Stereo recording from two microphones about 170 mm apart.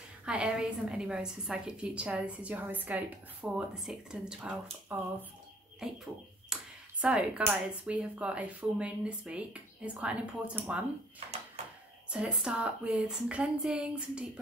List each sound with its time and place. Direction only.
0.2 s a woman's voice: 5° right (ahead or behind)
12.1 s a woman's voice: 5° right (ahead or behind)